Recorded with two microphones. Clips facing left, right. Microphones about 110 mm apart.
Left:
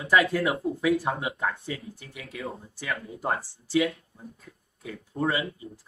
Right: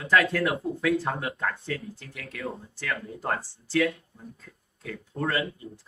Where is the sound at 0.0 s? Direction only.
10° left (ahead or behind).